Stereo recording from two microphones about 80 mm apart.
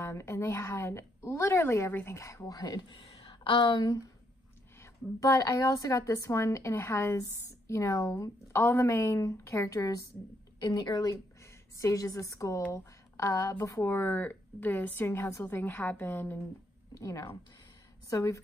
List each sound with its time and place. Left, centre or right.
0.0 s a woman's voice: left
2.4 s speech: left
5.2 s a woman's voice: left
10.6 s a woman's voice: left
11.8 s a woman's voice: left
16.9 s a woman's voice: left